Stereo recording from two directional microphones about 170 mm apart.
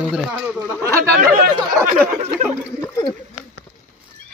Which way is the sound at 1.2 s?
50° right (ahead or behind).